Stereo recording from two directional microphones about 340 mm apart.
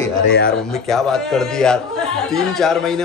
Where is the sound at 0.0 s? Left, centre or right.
Left.